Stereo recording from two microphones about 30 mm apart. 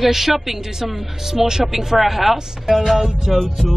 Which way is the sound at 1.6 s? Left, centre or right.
Centre.